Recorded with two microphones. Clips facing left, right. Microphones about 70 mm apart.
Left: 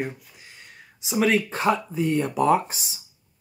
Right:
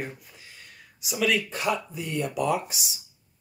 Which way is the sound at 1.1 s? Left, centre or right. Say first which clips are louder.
Left 4 dB; left.